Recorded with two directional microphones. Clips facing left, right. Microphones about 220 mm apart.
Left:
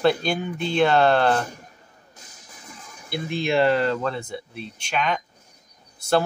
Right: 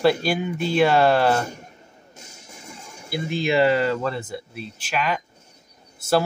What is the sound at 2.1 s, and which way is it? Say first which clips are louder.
Music: right 5 dB; 25° right (ahead or behind).